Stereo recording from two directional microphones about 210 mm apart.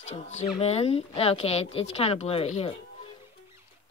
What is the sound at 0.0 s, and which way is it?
Speech, 30° left (ahead or behind).